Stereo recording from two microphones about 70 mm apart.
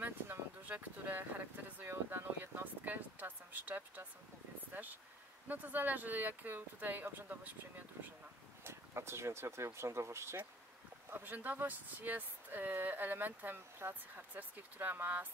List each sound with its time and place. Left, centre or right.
0.0 s a sound: right
5.5 s speech: right
8.6 s speech: right
11.1 s speech: right